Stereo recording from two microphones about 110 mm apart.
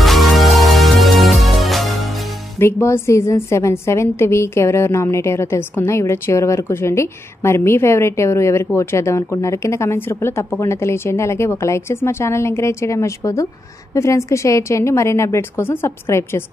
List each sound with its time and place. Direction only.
0.0 s music: centre (ahead or behind)
2.6 s a woman's voice: 25° left (ahead or behind)